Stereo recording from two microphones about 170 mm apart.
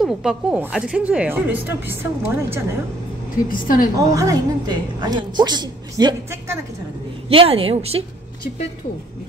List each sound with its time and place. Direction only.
0.0 s speech: centre (ahead or behind)
3.4 s a woman's voice: 55° left (ahead or behind)
4.1 s a woman's voice: 20° right (ahead or behind)
7.2 s a woman's voice: 35° right (ahead or behind)